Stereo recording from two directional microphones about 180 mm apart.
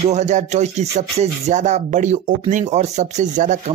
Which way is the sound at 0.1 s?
40° right (ahead or behind).